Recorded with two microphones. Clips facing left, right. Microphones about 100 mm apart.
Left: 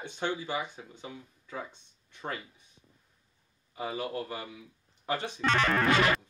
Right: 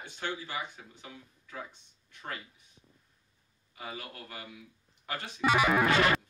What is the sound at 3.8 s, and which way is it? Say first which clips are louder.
Speech: left 9 dB; 30° left (ahead or behind).